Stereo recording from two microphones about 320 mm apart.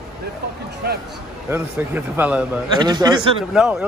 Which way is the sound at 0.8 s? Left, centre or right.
Right.